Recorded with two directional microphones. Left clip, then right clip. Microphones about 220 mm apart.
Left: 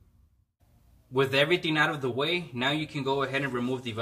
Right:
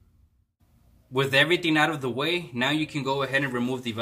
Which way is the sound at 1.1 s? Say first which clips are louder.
Right 3 dB; 45° right (ahead or behind).